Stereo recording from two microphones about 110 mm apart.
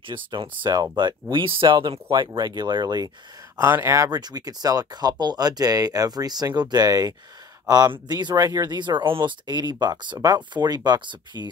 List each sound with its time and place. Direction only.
0.0 s speech: 50° right (ahead or behind)
3.7 s speech: 25° right (ahead or behind)